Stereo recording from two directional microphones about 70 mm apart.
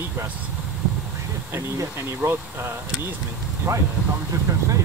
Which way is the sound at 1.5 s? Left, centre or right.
Right.